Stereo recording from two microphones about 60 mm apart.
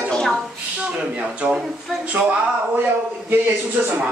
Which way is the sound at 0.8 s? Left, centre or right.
Right.